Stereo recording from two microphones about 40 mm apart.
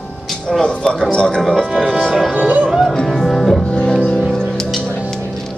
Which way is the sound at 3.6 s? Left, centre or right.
Left.